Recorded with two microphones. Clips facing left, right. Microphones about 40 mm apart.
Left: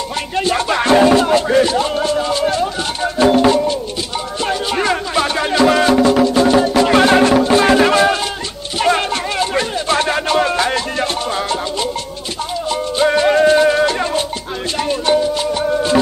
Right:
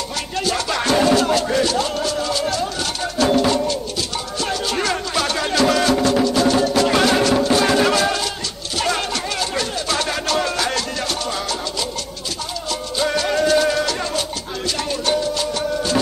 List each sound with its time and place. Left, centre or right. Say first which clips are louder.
0.4 s music: left 5 dB; left